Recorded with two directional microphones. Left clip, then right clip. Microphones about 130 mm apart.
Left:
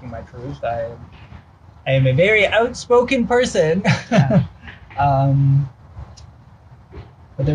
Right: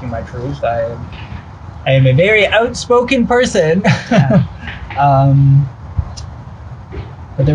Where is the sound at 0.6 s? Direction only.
5° left (ahead or behind).